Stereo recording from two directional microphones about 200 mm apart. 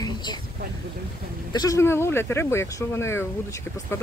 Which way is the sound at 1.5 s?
20° left (ahead or behind).